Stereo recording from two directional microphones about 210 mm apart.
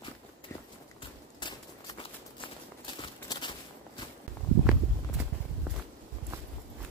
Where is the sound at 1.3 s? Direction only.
20° left (ahead or behind).